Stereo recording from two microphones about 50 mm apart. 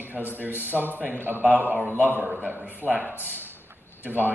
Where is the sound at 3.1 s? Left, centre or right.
Left.